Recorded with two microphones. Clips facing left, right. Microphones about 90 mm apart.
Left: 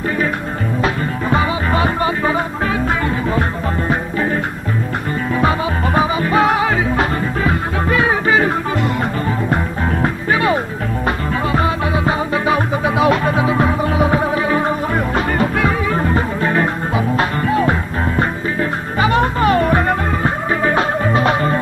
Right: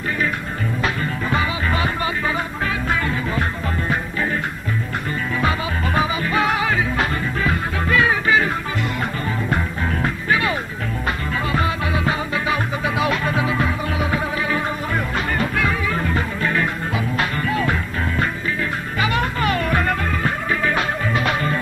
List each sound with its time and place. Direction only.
0.8 s music: 30° left (ahead or behind)
5.9 s music: 30° left (ahead or behind)